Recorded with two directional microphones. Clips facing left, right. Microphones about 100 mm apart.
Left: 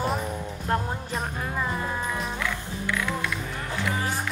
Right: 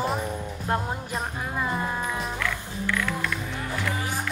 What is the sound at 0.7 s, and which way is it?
Music, 15° right (ahead or behind).